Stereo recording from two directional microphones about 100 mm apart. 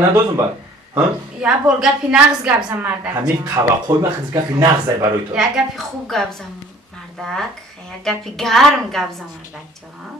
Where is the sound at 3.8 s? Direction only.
40° right (ahead or behind).